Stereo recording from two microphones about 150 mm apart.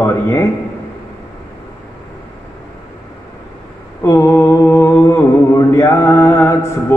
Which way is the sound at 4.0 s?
15° left (ahead or behind).